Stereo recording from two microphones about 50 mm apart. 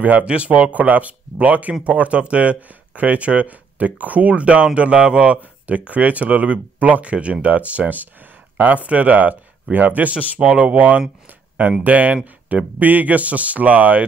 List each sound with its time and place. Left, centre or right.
0.0 s speech: right